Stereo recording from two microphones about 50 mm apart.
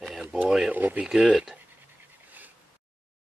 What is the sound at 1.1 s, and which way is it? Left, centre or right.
Speech, centre.